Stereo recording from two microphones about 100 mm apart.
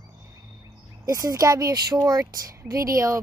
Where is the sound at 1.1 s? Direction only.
35° right (ahead or behind).